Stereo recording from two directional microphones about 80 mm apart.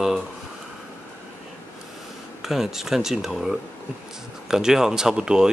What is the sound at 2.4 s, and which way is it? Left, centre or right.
Speech, centre.